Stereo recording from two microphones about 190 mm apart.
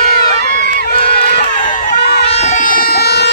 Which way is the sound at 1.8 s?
60° left (ahead or behind).